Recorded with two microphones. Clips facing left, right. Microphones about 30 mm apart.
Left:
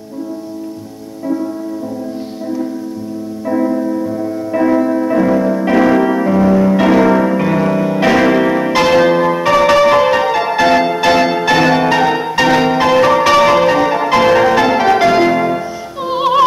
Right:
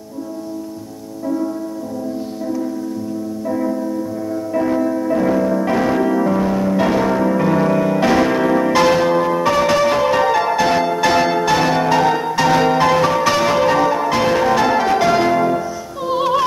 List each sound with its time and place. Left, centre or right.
3.7 s music: left
5.2 s music: left
5.7 s music: left
7.2 s music: left
7.7 s music: centre
8.0 s music: left
8.9 s change ringing: left
10.1 s music: left
10.5 s music: left
11.4 s music: left
13.0 s change ringing: left
15.0 s music: left